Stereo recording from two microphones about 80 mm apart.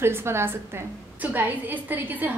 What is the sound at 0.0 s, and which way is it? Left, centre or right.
A woman's voice, right.